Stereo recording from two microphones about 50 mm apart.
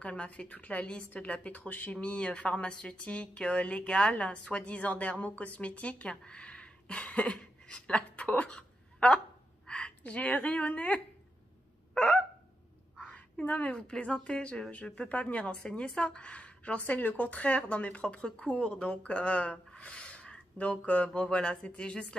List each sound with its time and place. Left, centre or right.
0.0 s speech: left
2.0 s a woman's voice: left
11.9 s honk: left
13.1 s quack: left
13.7 s speech: centre
15.6 s speech: centre
16.8 s speech: left; by 22.0 s centre